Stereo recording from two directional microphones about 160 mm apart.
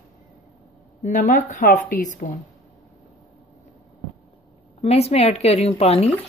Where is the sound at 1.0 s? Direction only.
50° left (ahead or behind).